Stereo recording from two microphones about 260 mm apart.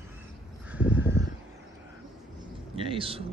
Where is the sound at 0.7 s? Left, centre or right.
Centre.